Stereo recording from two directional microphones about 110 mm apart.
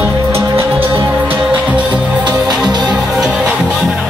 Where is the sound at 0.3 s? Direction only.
25° right (ahead or behind).